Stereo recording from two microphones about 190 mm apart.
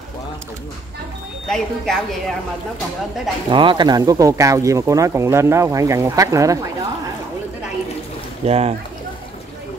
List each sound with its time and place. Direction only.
1.5 s speech: centre (ahead or behind)
3.4 s speech: 25° right (ahead or behind)
8.5 s speech: 35° right (ahead or behind)